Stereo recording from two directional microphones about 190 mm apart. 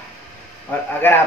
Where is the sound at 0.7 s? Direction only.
10° left (ahead or behind).